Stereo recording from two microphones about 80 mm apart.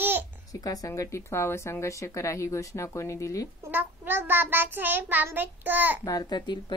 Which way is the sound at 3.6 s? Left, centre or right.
Right.